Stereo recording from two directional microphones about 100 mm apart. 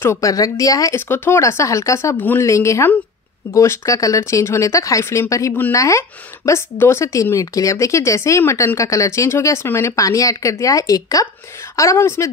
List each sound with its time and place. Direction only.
0.0 s speech: 25° left (ahead or behind)
0.3 s speech: 35° left (ahead or behind)
0.9 s speech: 20° left (ahead or behind)
2.1 s speech: 15° left (ahead or behind)
2.4 s speech: 30° left (ahead or behind)